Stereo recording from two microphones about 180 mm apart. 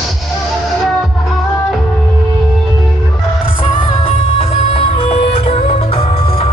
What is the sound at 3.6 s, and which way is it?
Music, 30° left (ahead or behind).